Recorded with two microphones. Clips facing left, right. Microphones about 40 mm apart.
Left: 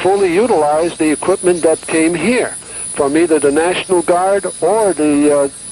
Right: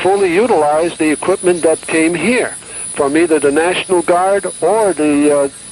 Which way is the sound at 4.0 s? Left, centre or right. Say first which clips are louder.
Right 1 dB; right.